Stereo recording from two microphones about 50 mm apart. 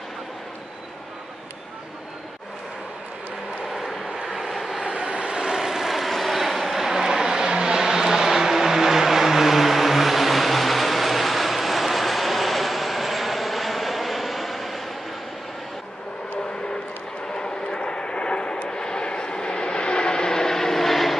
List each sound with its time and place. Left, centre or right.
3.6 s vehicle: centre
4.8 s vehicle: centre
17.4 s vehicle: centre